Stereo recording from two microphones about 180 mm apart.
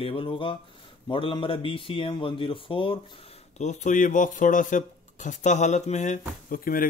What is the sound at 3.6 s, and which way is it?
Speech, 40° left (ahead or behind).